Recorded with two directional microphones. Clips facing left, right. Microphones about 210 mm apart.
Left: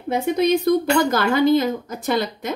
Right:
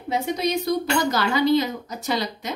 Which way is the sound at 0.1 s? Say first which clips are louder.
Left 5 dB; 55° left (ahead or behind).